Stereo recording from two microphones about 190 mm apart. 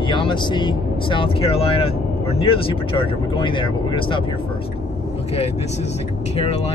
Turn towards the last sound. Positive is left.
turn(degrees=35)  # may be behind; listen again after turning